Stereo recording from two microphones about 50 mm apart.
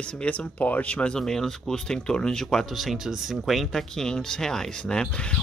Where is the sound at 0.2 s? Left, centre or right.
Left.